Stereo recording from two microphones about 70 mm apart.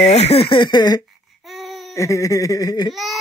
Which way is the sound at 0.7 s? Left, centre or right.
Left.